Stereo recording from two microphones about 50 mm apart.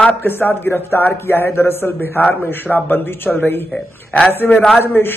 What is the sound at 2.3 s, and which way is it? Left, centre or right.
A man's voice, left.